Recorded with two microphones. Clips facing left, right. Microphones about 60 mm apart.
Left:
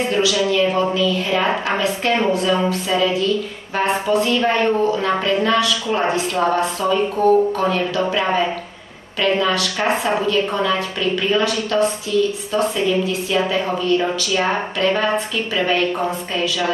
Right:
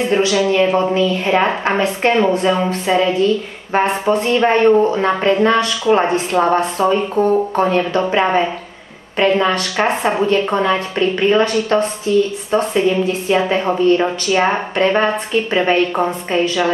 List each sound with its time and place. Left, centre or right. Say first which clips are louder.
0.1 s a woman's voice: right 4 dB; right